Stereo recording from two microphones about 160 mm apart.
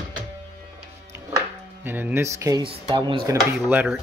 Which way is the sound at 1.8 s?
10° right (ahead or behind).